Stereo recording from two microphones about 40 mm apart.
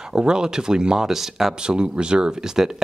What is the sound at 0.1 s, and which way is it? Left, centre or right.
Speech, centre.